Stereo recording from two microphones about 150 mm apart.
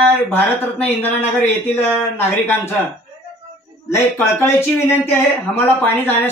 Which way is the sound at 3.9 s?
15° left (ahead or behind).